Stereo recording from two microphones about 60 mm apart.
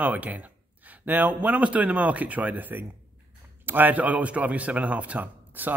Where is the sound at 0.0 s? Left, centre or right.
Right.